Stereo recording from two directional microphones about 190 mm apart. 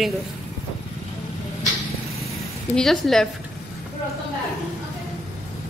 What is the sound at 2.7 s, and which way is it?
Speech, centre (ahead or behind).